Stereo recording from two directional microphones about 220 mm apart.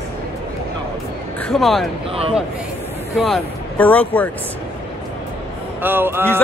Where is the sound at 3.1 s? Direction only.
Centre (ahead or behind).